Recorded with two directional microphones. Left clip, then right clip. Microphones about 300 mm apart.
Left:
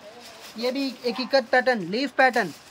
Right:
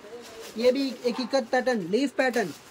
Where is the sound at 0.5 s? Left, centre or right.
Centre.